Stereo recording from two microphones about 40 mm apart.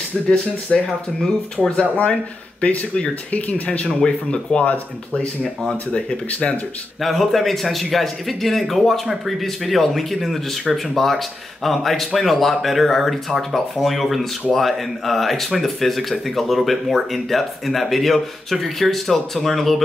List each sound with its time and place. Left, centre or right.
0.3 s speech: left
3.3 s speech: left
3.8 s speech: left
5.9 s speech: left
7.0 s speech: centre
9.0 s speech: centre